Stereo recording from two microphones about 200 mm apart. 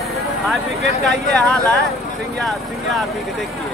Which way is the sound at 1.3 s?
5° left (ahead or behind).